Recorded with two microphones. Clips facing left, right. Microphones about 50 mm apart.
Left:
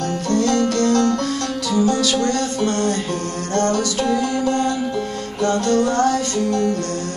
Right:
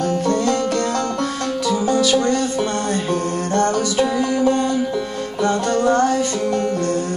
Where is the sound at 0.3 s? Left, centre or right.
Centre.